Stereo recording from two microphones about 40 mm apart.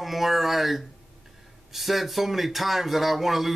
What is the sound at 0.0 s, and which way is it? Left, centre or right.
Speech, centre.